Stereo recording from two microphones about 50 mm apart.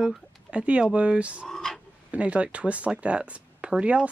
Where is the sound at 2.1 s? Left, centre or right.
Right.